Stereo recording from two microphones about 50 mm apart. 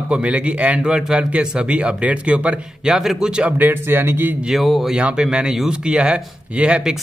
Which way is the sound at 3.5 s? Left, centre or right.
Right.